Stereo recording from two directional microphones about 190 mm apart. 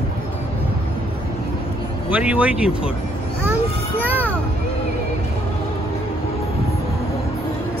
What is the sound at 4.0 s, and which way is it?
Children playing, 10° right (ahead or behind).